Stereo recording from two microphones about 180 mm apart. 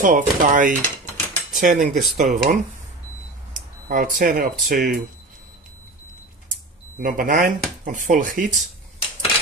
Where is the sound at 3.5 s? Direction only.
50° right (ahead or behind).